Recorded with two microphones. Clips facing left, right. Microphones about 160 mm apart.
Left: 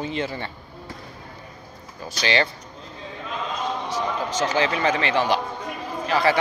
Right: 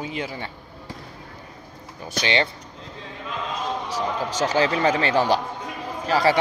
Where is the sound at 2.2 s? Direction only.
20° right (ahead or behind).